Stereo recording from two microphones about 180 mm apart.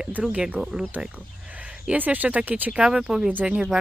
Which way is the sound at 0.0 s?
5° right (ahead or behind).